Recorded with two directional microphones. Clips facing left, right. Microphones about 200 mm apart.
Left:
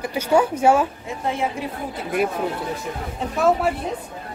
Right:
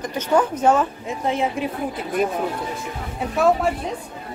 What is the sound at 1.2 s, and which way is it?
Speech, 20° right (ahead or behind).